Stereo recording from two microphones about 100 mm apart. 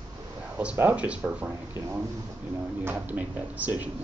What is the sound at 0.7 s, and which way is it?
Speech, 15° right (ahead or behind).